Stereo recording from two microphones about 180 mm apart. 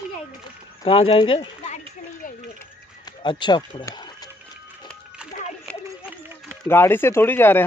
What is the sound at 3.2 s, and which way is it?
Speech, 25° left (ahead or behind).